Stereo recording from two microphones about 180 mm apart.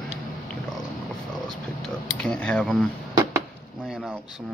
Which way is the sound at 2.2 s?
5° left (ahead or behind).